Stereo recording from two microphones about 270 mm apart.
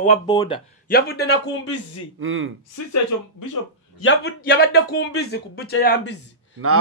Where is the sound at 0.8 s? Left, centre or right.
Left.